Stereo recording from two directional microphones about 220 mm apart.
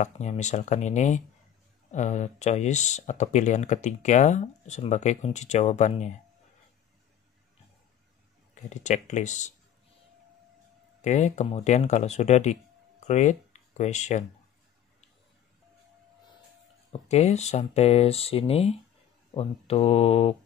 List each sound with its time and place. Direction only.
0.0 s speech: 30° left (ahead or behind)
8.6 s speech: 30° left (ahead or behind)
11.0 s speech: 30° left (ahead or behind)
16.9 s speech: 30° left (ahead or behind)